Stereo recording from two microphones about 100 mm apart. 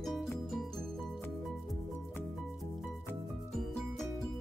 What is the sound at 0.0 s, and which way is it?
Music, centre (ahead or behind).